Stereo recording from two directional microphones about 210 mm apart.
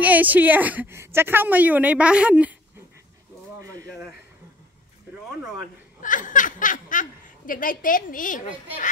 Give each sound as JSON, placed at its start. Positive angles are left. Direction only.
{"t": 0.0, "sound": "a woman's voice", "side_deg": -5}
{"t": 5.9, "sound": "speech", "side_deg": 40}